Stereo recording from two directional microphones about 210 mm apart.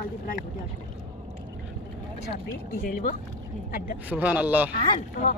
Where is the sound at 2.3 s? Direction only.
45° left (ahead or behind).